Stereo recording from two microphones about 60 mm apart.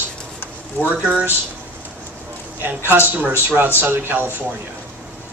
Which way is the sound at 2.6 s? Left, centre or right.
Right.